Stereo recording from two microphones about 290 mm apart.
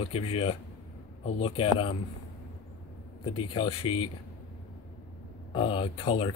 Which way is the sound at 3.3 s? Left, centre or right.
Centre.